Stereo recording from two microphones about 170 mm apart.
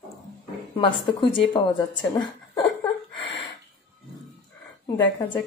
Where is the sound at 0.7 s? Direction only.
30° left (ahead or behind).